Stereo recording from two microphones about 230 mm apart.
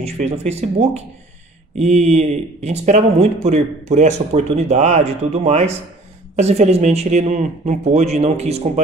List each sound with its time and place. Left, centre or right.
0.0 s speech: right